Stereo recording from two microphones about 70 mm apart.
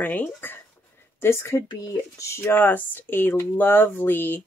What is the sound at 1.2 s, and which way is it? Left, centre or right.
A woman's voice, left.